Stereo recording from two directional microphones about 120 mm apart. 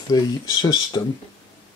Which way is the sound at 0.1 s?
40° left (ahead or behind).